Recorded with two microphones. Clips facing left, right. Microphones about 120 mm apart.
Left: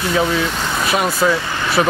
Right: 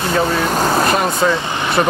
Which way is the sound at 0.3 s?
45° right (ahead or behind).